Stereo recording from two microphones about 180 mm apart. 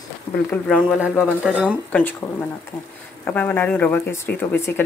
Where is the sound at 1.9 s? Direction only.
10° left (ahead or behind).